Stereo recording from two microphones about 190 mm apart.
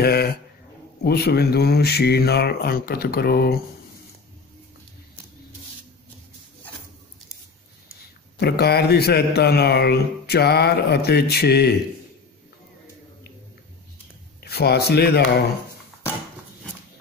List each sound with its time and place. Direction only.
0.0 s a sound: 55° left (ahead or behind)
1.0 s speech: 55° left (ahead or behind)
8.4 s speech: 55° left (ahead or behind)
14.4 s speech: 55° left (ahead or behind)